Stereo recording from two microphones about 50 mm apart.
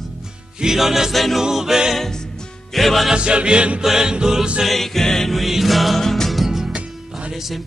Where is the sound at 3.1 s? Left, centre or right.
Right.